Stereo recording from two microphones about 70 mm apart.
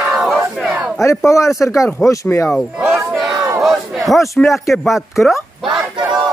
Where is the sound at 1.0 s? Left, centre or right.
Left.